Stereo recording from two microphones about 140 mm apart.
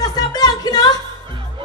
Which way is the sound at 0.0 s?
30° left (ahead or behind).